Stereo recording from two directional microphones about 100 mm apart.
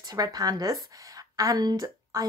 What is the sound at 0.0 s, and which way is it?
A woman's voice, 40° right (ahead or behind).